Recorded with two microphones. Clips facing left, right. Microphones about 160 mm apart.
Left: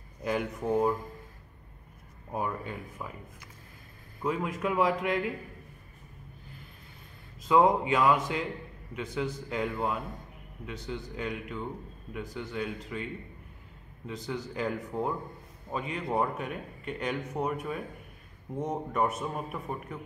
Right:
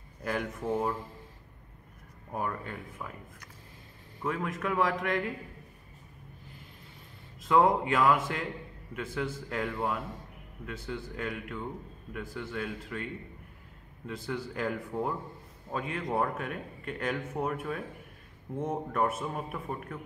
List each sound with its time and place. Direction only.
0.3 s speech: centre (ahead or behind)
2.3 s speech: 5° left (ahead or behind)
7.4 s speech: centre (ahead or behind)
18.5 s speech: 15° left (ahead or behind)
18.9 s speech: centre (ahead or behind)